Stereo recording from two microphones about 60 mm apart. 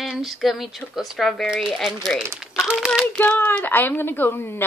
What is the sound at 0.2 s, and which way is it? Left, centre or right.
Speech, centre.